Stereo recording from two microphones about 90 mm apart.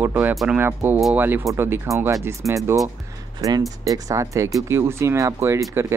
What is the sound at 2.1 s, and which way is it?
Speech, 35° right (ahead or behind).